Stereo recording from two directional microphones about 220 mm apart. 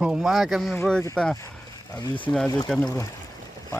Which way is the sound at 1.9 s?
15° left (ahead or behind).